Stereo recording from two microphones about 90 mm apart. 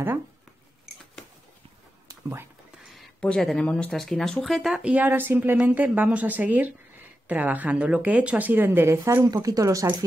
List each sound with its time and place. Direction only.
3.2 s speech: 10° left (ahead or behind)
4.9 s speech: 20° right (ahead or behind)
9.2 s speech: 45° right (ahead or behind)